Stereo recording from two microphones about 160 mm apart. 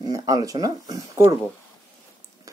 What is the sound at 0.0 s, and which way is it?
Speech, 25° right (ahead or behind).